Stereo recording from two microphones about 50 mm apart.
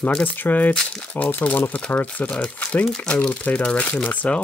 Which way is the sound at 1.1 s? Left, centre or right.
Left.